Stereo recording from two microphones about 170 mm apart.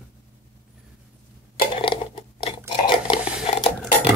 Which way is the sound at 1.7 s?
30° left (ahead or behind).